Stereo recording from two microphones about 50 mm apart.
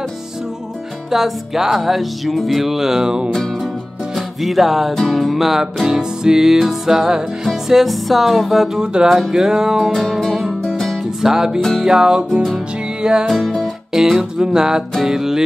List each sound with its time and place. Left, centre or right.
1.1 s music: centre
8.8 s music: centre
9.1 s music: centre
9.9 s music: centre
13.3 s music: centre